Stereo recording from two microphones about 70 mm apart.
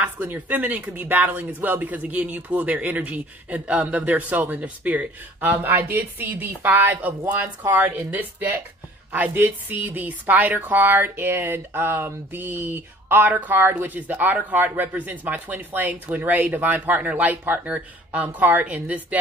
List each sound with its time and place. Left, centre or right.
0.0 s speech: right